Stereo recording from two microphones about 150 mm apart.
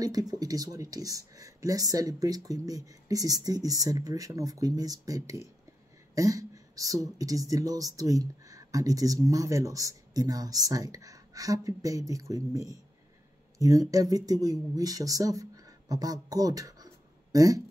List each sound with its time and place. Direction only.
0.0 s speech: 25° right (ahead or behind)